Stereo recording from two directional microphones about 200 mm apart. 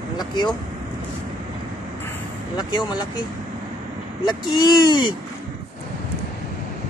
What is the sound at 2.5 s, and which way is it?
Speech, 20° left (ahead or behind).